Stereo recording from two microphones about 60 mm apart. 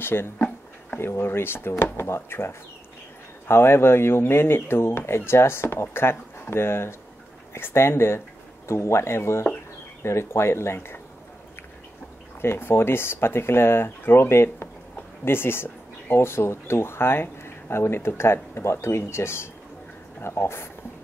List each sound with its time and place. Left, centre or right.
0.0 s speech: left
12.4 s speech: left